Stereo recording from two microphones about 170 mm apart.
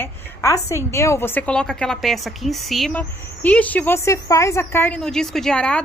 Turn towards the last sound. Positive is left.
turn(degrees=5)  # may be behind; listen again after turning